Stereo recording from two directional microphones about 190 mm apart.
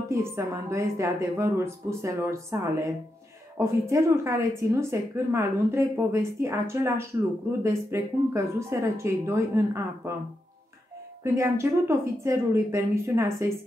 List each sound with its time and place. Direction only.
0.1 s speech: 15° right (ahead or behind)
11.3 s speech: 15° right (ahead or behind)